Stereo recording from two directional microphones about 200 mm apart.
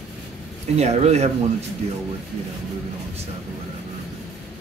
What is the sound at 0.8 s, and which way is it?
Speech, 35° right (ahead or behind).